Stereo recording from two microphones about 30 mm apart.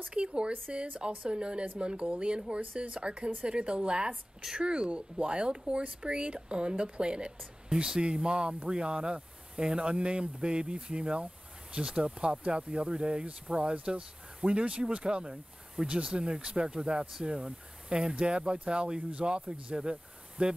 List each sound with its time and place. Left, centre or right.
0.1 s speech: right
2.6 s speech: right
2.9 s speech: right
7.7 s speech: centre
8.0 s speech: right
15.7 s speech: right